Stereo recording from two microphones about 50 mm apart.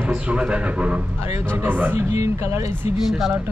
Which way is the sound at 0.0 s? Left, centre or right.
Right.